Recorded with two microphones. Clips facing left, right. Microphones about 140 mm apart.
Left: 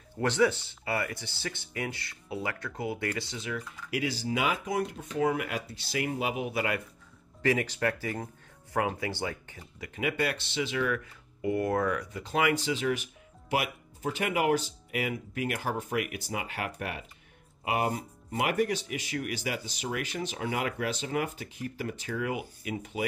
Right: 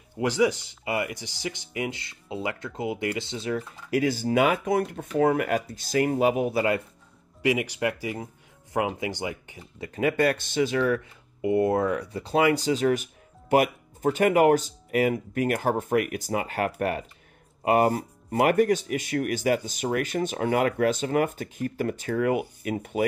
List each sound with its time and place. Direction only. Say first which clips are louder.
0.2 s speech: right 3 dB; 15° right (ahead or behind)
3.4 s speech: right 7 dB; 35° right (ahead or behind)
7.4 s speech: right 3 dB; 15° right (ahead or behind)
9.8 s speech: right 7 dB; 40° right (ahead or behind)
11.4 s speech: right 5 dB; 25° right (ahead or behind); by 23.0 s 50° right (ahead or behind)